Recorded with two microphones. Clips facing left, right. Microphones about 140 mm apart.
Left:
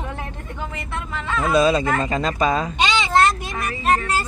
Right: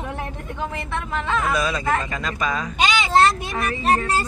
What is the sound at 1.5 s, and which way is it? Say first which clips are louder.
Speech: left 10 dB; 25° left (ahead or behind).